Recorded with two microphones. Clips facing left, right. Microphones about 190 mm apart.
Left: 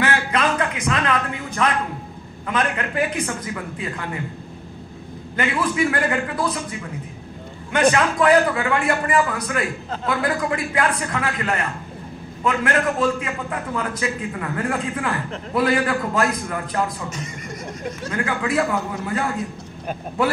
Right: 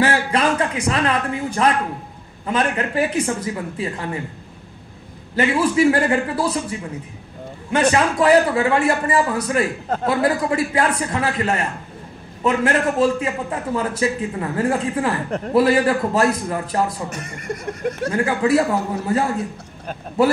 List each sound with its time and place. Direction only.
0.0 s a sound: 30° right (ahead or behind)
2.4 s a man's voice: 30° right (ahead or behind)
5.3 s a man's voice: 30° right (ahead or behind)
7.9 s a man's voice: 30° right (ahead or behind)
17.1 s speech: 65° right (ahead or behind)
18.1 s a man's voice: 30° right (ahead or behind)